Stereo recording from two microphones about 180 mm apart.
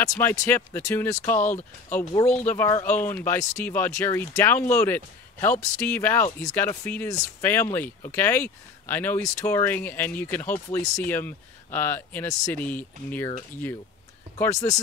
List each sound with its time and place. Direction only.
0.5 s speech: 10° left (ahead or behind)
14.4 s speech: 20° left (ahead or behind)